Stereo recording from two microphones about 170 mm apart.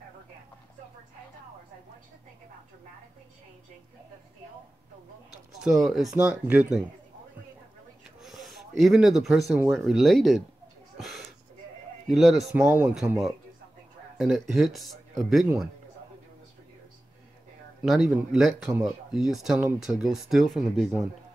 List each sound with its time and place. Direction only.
5.6 s speech: centre (ahead or behind)
8.2 s speech: centre (ahead or behind)
11.0 s a sound: centre (ahead or behind)
12.1 s speech: centre (ahead or behind)
14.1 s speech: centre (ahead or behind)
17.8 s speech: 5° right (ahead or behind)